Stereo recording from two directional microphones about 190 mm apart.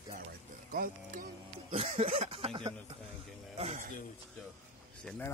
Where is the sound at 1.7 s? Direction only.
35° right (ahead or behind).